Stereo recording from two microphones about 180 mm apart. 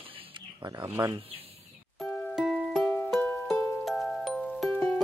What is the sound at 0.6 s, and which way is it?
Speech, 20° right (ahead or behind).